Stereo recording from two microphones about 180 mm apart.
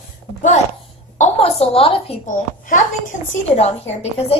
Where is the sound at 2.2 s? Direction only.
45° left (ahead or behind).